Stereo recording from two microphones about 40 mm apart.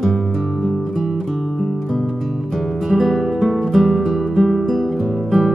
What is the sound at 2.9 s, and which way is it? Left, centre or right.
Music, centre.